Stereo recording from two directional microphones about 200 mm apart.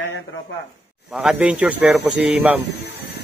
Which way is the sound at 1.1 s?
5° right (ahead or behind).